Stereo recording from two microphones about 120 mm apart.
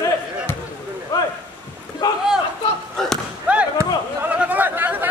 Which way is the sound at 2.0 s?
30° left (ahead or behind).